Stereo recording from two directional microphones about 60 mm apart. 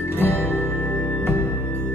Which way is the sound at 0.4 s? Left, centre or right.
Left.